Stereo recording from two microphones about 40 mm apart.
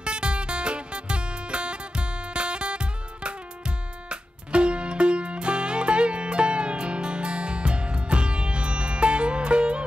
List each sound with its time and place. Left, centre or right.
0.0 s music: right